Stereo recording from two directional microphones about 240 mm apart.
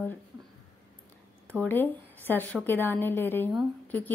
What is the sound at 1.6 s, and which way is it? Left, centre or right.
A woman's voice, centre.